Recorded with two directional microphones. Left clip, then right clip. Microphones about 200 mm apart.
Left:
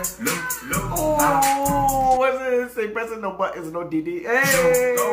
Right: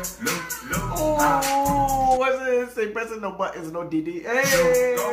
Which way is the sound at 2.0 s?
5° right (ahead or behind).